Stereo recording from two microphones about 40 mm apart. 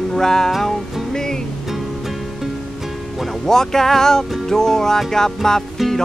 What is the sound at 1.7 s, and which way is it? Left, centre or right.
Music, centre.